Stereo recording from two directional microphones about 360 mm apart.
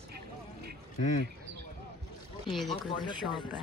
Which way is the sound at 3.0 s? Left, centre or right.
Centre.